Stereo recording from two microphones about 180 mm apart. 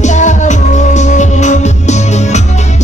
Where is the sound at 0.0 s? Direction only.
40° left (ahead or behind).